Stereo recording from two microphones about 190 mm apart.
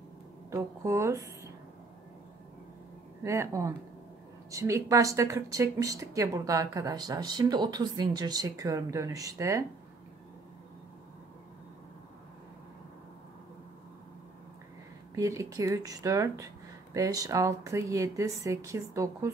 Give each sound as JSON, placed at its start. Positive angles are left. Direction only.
{"t": 0.5, "sound": "speech", "side_deg": -15}
{"t": 3.3, "sound": "speech", "side_deg": -15}
{"t": 15.1, "sound": "speech", "side_deg": -15}